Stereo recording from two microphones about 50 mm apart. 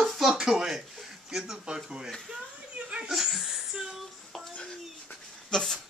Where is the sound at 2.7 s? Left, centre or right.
Right.